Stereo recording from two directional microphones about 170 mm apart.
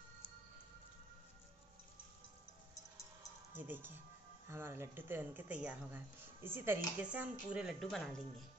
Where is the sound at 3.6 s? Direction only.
10° right (ahead or behind).